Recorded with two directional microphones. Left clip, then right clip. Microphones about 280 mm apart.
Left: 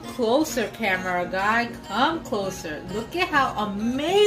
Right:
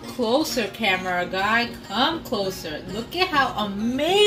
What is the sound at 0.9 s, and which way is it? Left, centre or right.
A woman's voice, centre.